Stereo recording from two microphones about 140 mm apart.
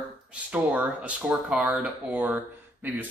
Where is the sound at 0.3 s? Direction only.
10° right (ahead or behind).